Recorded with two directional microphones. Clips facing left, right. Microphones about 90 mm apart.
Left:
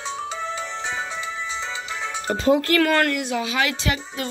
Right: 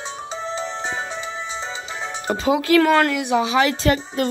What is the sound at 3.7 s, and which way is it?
Speech, 40° right (ahead or behind).